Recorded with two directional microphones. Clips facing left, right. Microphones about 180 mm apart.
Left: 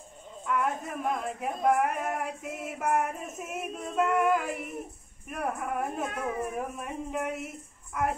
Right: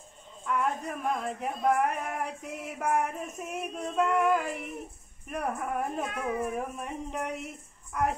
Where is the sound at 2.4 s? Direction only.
50° left (ahead or behind).